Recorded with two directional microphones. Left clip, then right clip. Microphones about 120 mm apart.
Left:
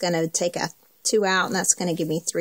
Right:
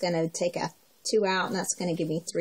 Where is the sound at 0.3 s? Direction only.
Centre (ahead or behind).